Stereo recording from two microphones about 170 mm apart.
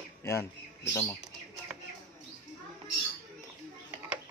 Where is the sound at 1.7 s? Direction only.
5° right (ahead or behind).